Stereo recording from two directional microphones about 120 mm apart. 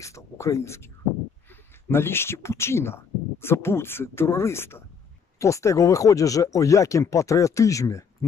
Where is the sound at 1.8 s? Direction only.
20° left (ahead or behind).